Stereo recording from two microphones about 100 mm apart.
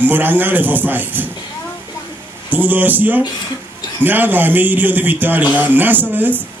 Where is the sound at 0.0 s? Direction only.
20° right (ahead or behind).